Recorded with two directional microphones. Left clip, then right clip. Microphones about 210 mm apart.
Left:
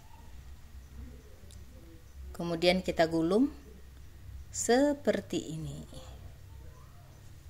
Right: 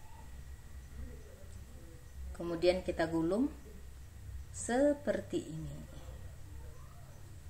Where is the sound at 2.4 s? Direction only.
50° left (ahead or behind).